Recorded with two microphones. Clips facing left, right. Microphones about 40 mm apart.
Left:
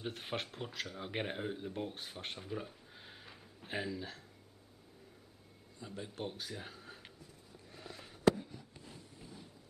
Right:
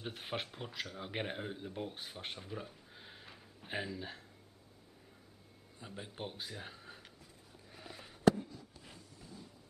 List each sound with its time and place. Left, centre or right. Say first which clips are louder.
0.0 s speech: left 1 dB; centre
5.8 s speech: left 2 dB; centre
6.5 s speech: left 1 dB; centre
7.7 s fireworks: even; centre